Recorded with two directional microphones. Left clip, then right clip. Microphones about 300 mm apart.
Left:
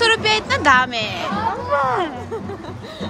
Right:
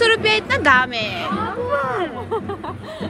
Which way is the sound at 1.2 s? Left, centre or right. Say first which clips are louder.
Left 1 dB; left.